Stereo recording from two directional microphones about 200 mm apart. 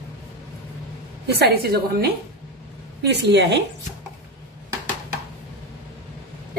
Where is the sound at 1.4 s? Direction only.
50° right (ahead or behind).